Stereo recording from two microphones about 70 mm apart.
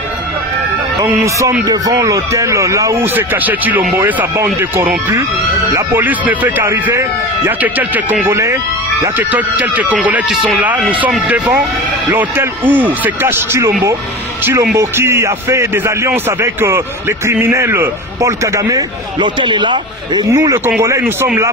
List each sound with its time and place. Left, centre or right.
1.7 s speech: right
3.2 s speech: right
6.6 s speech: right
7.6 s speech: right
8.3 s speech: right
9.3 s speech: right
10.3 s speech: centre
10.6 s speech: right
19.1 s speech: right
20.8 s speech: right